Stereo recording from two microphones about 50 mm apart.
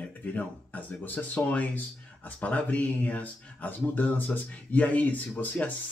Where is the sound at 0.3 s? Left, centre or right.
Left.